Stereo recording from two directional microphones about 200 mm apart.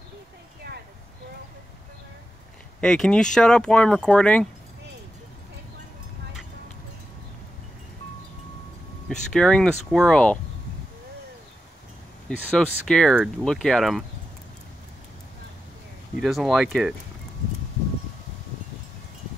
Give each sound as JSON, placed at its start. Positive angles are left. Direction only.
{"t": 0.7, "sound": "a sound", "side_deg": -60}
{"t": 2.8, "sound": "speech", "side_deg": 5}
{"t": 9.3, "sound": "speech", "side_deg": 5}
{"t": 12.3, "sound": "speech", "side_deg": 5}
{"t": 16.2, "sound": "speech", "side_deg": 0}